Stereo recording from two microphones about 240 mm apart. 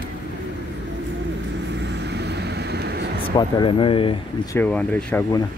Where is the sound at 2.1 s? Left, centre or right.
Right.